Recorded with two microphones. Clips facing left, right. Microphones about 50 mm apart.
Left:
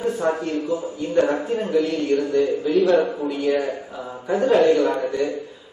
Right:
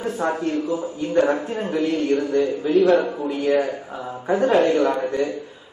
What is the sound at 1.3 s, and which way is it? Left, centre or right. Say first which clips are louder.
A man's voice: left 2 dB; right.